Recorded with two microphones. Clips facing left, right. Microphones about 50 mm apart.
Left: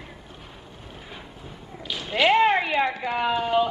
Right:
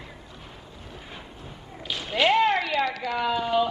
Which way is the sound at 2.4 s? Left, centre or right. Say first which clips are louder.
Left 2 dB; left.